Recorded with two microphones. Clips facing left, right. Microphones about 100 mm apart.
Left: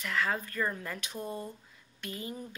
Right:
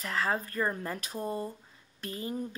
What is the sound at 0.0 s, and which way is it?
A woman's voice, 35° right (ahead or behind).